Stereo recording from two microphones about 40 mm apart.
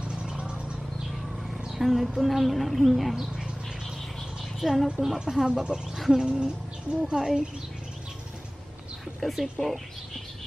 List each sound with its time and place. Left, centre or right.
0.0 s a sound: right
1.7 s speech: centre
4.6 s a woman's voice: centre
9.2 s speech: centre